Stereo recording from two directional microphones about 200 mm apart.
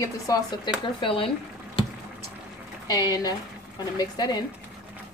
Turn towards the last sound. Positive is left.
turn(degrees=20)  # may be behind; listen again after turning